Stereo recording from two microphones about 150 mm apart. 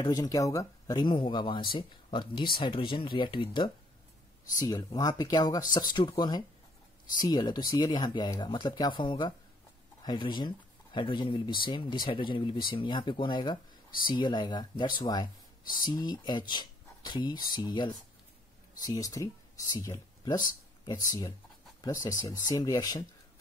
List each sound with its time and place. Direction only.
0.0 s speech: 25° left (ahead or behind)